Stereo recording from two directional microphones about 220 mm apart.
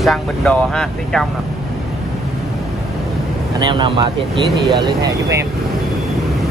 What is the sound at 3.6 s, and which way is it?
Speech, 20° right (ahead or behind).